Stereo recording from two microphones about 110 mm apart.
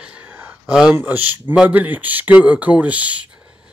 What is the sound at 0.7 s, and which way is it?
Speech, 5° right (ahead or behind).